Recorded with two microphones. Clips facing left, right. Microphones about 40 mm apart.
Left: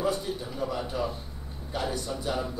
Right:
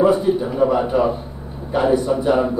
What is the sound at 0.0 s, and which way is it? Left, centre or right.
A man's voice, right.